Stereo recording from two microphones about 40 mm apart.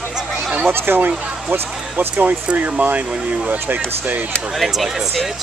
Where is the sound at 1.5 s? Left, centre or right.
Right.